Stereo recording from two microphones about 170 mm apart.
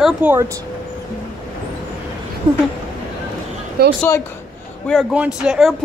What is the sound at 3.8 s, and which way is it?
Speech, 65° right (ahead or behind).